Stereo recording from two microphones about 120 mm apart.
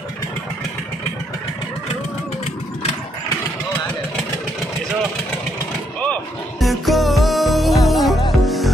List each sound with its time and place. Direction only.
6.6 s music: centre (ahead or behind)